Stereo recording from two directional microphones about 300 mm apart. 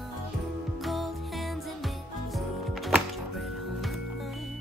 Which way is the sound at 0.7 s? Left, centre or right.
Centre.